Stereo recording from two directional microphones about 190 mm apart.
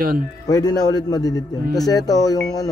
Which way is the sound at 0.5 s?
20° left (ahead or behind).